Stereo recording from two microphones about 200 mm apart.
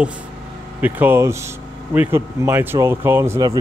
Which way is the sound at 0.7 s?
10° right (ahead or behind).